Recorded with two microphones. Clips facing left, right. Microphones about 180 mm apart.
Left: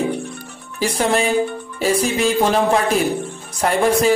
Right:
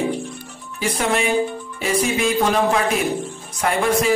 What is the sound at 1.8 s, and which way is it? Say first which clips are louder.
Speech: left 2 dB; 35° left (ahead or behind).